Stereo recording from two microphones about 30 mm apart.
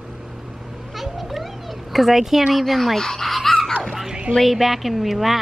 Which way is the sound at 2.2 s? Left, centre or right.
Centre.